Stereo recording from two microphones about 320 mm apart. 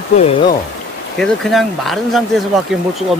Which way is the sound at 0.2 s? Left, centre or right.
Centre.